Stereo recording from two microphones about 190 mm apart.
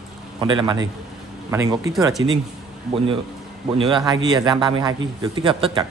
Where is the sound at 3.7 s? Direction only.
25° right (ahead or behind).